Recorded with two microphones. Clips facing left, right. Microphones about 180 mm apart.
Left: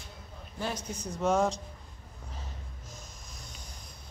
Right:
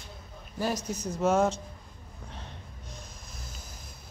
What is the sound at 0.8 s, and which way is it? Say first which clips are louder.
Speech: even; 5° right (ahead or behind).